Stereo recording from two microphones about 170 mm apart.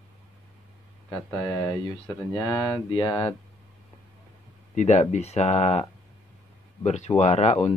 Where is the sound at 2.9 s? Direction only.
30° left (ahead or behind).